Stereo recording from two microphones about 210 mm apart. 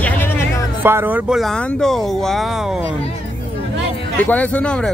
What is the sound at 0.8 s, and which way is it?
Speech, 10° right (ahead or behind).